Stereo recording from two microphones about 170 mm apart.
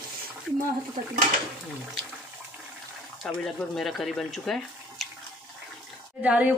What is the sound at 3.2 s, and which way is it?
Speech, centre (ahead or behind).